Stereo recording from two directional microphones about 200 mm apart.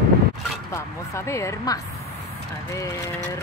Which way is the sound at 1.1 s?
15° left (ahead or behind).